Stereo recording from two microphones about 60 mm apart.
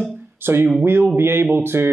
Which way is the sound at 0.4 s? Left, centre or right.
Right.